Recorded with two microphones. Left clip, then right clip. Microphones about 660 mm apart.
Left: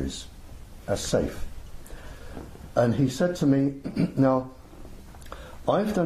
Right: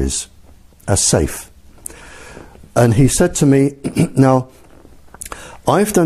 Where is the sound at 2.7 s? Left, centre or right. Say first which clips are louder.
Right 9 dB; right.